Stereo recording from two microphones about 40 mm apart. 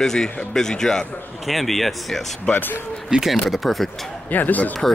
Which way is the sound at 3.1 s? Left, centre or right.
Right.